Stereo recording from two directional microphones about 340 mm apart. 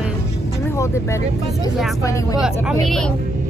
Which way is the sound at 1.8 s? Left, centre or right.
Centre.